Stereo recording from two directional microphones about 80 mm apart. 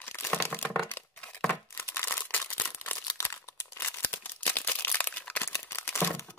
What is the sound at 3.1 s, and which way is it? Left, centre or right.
Crumpling, left.